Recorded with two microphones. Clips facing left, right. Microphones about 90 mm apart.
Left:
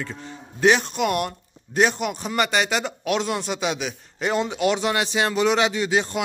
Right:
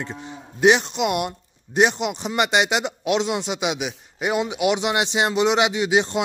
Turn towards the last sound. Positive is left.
turn(degrees=-20)  # may be behind; listen again after turning